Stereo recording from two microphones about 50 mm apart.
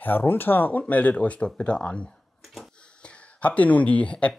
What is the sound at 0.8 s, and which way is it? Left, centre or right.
Speech, left.